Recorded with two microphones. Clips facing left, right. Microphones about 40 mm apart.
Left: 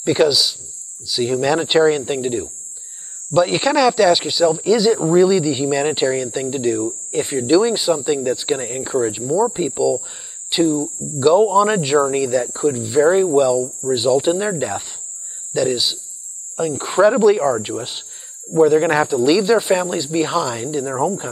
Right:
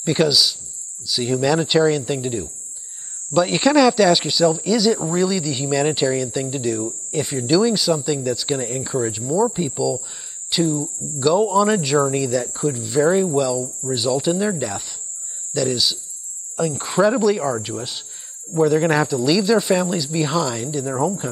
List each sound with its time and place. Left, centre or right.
0.0 s speech: centre; by 2.4 s left
3.3 s speech: centre
9.2 s speech: centre
18.5 s speech: centre